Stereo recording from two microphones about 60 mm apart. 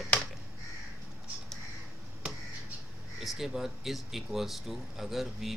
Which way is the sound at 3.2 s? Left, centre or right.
Centre.